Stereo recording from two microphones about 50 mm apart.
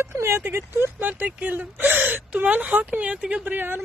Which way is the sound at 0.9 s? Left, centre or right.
Right.